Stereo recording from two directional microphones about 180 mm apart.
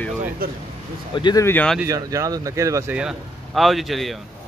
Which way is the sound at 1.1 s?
25° left (ahead or behind).